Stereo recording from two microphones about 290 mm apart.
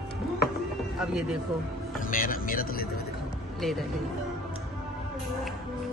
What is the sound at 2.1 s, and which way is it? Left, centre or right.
Speech, left.